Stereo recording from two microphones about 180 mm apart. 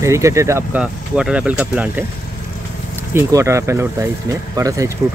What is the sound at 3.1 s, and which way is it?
Speech, 15° right (ahead or behind).